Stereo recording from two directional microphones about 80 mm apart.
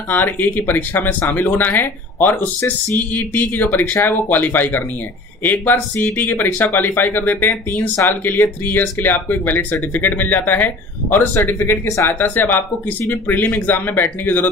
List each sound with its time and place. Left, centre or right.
0.1 s speech: left
7.9 s speech: left
8.2 s speech: left